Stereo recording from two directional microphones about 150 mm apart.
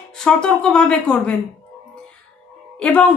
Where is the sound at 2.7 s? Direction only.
10° left (ahead or behind).